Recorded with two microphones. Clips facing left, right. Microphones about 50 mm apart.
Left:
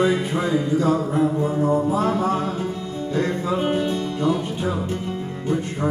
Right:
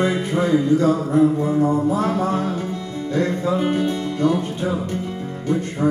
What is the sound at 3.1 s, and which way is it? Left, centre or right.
Music, left.